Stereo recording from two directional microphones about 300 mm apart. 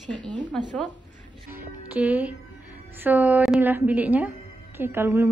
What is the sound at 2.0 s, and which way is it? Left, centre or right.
A woman's voice, centre.